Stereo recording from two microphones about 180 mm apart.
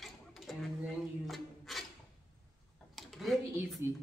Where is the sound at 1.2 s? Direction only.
Centre (ahead or behind).